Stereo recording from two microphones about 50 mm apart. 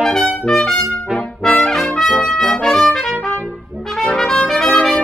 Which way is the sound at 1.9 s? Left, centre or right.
Centre.